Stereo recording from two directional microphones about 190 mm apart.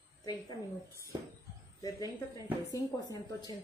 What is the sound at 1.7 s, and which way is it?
Speech, 20° left (ahead or behind).